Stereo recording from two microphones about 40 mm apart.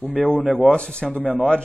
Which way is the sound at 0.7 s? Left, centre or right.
Left.